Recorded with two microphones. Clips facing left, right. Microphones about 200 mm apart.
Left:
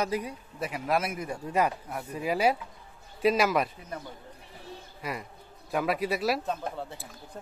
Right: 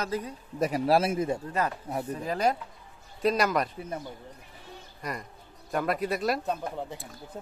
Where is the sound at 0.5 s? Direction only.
40° right (ahead or behind).